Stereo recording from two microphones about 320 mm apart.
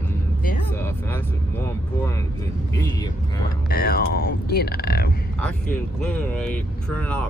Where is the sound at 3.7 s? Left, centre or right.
Left.